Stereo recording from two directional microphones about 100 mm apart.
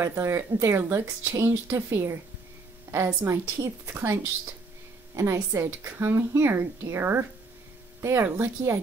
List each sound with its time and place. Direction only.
0.0 s speech: 25° right (ahead or behind)
3.3 s speech: 25° right (ahead or behind)